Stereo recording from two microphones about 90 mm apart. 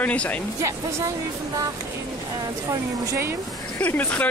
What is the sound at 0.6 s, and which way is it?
Speech, 35° right (ahead or behind).